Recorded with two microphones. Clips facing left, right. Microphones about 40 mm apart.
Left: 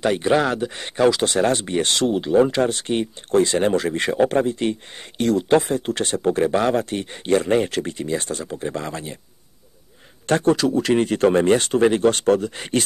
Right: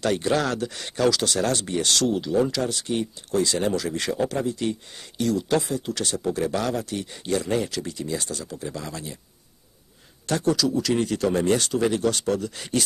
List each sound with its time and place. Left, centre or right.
0.0 s speech: left
10.2 s speech: left